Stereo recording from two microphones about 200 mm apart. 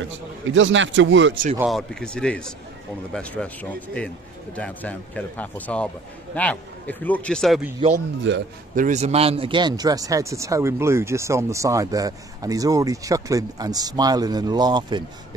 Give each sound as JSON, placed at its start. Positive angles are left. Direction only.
{"t": 0.5, "sound": "speech", "side_deg": -70}
{"t": 1.7, "sound": "speech", "side_deg": 0}
{"t": 8.3, "sound": "speech", "side_deg": -65}
{"t": 8.7, "sound": "speech", "side_deg": -35}